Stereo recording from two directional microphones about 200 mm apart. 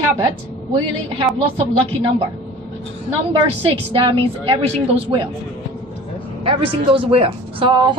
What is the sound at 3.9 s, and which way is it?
A man's voice, 25° right (ahead or behind).